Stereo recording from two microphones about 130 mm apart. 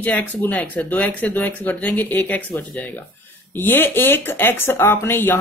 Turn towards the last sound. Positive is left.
turn(degrees=15)  # may be behind; listen again after turning